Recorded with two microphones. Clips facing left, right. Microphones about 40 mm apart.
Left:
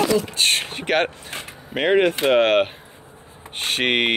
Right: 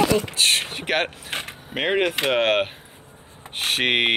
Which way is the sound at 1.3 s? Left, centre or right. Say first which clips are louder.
Right 3 dB; right.